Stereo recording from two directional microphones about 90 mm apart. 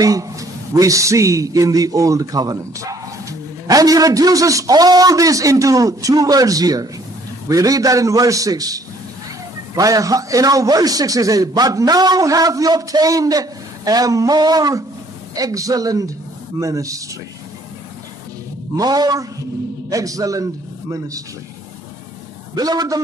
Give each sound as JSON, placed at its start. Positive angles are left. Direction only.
{"t": 0.0, "sound": "a man's voice", "side_deg": -40}
{"t": 18.8, "sound": "a man's voice", "side_deg": -50}
{"t": 22.5, "sound": "a man's voice", "side_deg": -45}